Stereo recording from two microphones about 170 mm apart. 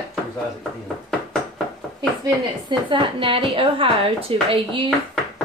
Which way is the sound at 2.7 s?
30° right (ahead or behind).